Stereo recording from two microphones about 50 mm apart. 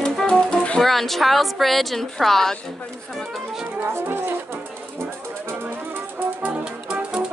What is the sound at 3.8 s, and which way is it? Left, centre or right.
Speech, right.